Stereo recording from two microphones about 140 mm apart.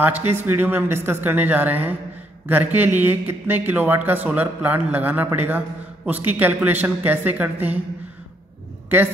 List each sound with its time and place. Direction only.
0.0 s a man's voice: 15° right (ahead or behind)